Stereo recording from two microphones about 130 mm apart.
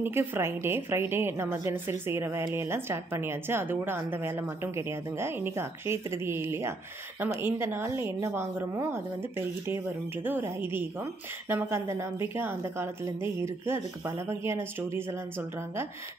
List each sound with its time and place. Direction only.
0.0 s a woman's voice: 15° right (ahead or behind)